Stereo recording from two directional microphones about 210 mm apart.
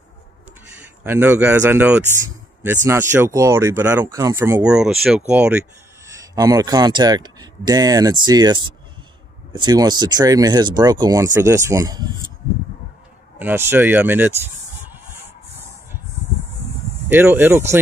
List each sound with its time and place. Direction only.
1.0 s speech: 10° right (ahead or behind)
13.4 s speech: 10° right (ahead or behind)
17.1 s speech: 10° right (ahead or behind)